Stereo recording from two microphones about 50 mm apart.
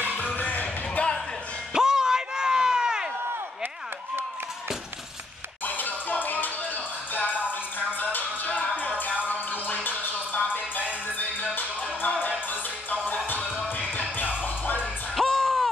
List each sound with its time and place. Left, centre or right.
0.2 s music: left
1.7 s music: centre
5.7 s music: left
8.0 s music: left
15.1 s music: centre